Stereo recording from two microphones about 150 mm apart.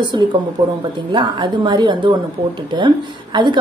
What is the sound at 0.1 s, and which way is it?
A woman's voice, 30° right (ahead or behind).